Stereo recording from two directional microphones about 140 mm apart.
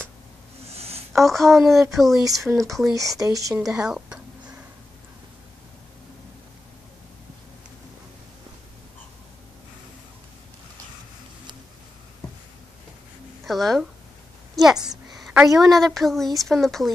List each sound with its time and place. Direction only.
0.7 s a sound: 45° right (ahead or behind)
1.2 s speech: centre (ahead or behind)
3.2 s speech: 25° right (ahead or behind)
3.6 s speech: 5° right (ahead or behind)
13.5 s speech: centre (ahead or behind)
14.5 s a sound: 5° right (ahead or behind)
15.6 s speech: centre (ahead or behind)